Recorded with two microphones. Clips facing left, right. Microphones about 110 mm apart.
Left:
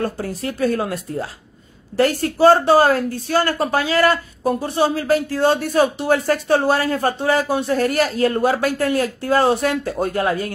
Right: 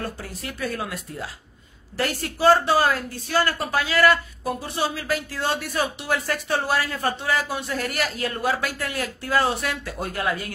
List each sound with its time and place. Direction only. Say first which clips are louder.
0.0 s a woman's voice: left 9 dB; 40° left (ahead or behind)